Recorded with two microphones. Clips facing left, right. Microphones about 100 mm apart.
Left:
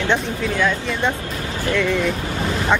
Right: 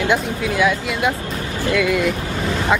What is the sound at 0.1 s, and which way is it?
Speech, 10° right (ahead or behind).